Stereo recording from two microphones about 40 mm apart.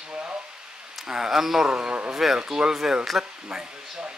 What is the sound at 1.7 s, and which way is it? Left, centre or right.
A man's voice, right.